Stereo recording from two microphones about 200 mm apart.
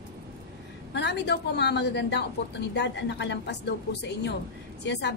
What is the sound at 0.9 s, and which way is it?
A woman's voice, 60° left (ahead or behind).